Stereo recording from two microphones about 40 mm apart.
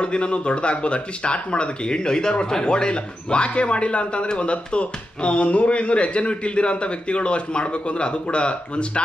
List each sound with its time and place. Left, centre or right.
0.0 s speech: left